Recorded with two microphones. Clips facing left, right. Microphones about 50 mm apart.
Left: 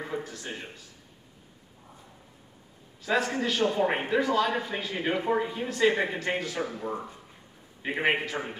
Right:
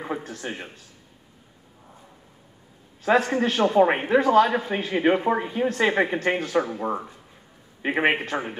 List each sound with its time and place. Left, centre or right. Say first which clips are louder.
0.0 s a man's voice: right 4 dB; right
3.0 s speech: right 6 dB; right
7.8 s speech: right 5 dB; right